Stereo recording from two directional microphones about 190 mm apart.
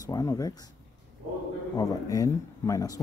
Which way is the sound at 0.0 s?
20° left (ahead or behind).